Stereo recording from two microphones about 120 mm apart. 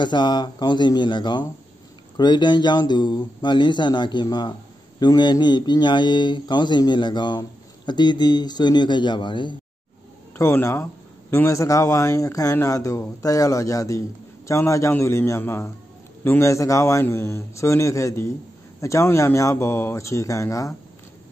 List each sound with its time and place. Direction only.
0.0 s speech: 40° left (ahead or behind)
10.3 s a man's voice: 20° left (ahead or behind)